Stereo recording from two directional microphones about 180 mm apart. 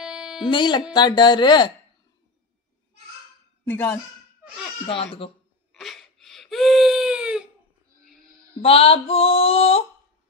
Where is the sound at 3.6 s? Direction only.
10° left (ahead or behind).